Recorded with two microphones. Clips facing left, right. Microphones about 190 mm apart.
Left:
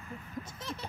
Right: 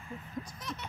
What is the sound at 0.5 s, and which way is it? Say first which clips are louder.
Speech: left 1 dB; 30° left (ahead or behind).